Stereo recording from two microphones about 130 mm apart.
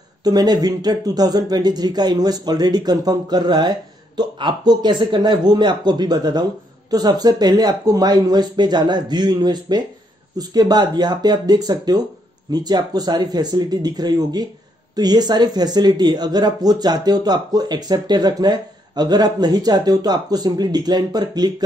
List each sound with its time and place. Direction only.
0.2 s speech: 30° right (ahead or behind)